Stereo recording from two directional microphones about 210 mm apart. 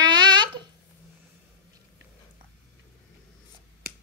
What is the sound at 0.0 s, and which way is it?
Babbling, 20° right (ahead or behind).